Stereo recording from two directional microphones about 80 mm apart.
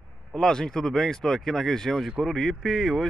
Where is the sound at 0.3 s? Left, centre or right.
Centre.